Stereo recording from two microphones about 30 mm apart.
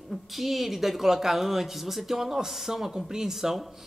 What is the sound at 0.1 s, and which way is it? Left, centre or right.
Speech, centre.